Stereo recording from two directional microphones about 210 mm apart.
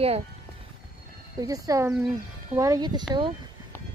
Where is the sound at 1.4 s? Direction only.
15° right (ahead or behind).